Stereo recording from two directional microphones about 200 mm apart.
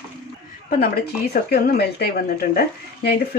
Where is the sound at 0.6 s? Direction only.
50° left (ahead or behind).